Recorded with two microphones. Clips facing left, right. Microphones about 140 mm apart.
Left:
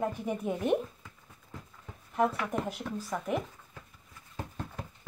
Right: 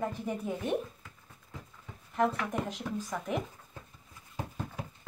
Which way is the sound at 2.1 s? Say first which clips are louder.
Left 1 dB; 5° left (ahead or behind).